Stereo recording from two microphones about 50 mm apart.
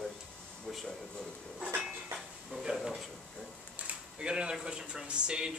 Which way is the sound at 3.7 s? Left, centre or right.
Right.